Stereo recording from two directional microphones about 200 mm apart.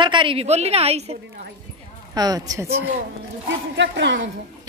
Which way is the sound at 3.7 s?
65° right (ahead or behind).